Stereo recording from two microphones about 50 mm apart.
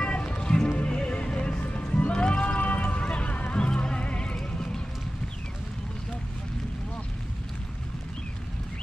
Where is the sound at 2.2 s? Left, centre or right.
Left.